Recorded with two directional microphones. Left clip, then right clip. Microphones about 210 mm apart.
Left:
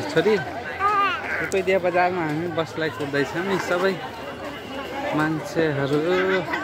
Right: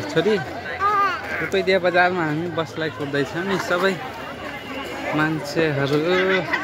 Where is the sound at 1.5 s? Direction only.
15° right (ahead or behind).